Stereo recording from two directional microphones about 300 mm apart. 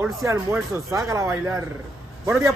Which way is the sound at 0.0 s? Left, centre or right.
Centre.